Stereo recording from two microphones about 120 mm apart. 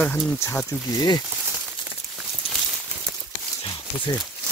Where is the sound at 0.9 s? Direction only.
35° left (ahead or behind).